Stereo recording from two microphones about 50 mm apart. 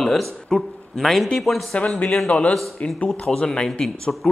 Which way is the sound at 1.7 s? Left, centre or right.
Left.